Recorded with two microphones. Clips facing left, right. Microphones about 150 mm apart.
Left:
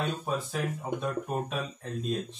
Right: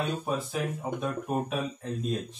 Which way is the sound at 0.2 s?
5° right (ahead or behind).